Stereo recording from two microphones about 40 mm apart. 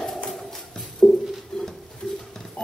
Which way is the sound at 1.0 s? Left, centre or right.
Centre.